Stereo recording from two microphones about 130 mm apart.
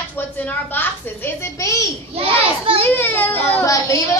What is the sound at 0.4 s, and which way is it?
A woman's voice, 15° left (ahead or behind).